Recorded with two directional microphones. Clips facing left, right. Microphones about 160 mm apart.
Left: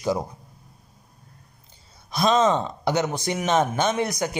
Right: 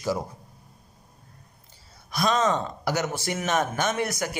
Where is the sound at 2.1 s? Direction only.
25° left (ahead or behind).